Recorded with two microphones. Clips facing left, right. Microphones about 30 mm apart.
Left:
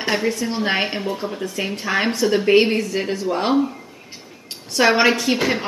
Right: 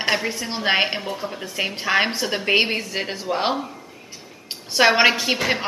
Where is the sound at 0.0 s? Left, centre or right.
Centre.